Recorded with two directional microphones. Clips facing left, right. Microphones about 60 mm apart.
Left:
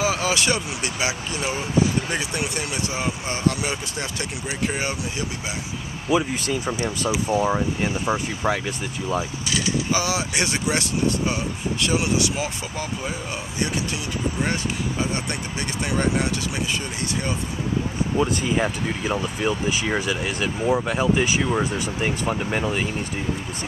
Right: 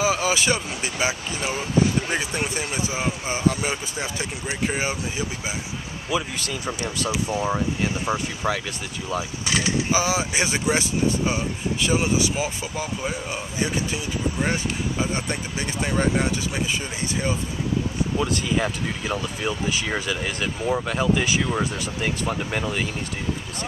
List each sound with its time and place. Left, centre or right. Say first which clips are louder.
0.0 s speech: right 1 dB; centre
6.0 s speech: left 5 dB; left
9.9 s speech: right 1 dB; centre
14.4 s speech: right 1 dB; centre
18.1 s speech: left 3 dB; left